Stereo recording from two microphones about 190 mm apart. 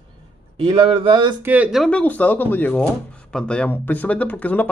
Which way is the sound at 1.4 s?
10° right (ahead or behind).